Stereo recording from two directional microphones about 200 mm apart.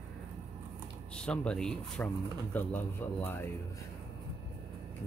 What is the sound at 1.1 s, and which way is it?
Speech, 5° left (ahead or behind).